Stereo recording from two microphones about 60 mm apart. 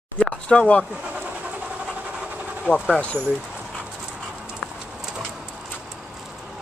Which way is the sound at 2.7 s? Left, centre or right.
Left.